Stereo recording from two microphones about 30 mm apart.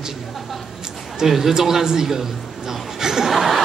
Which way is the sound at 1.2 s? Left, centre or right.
Centre.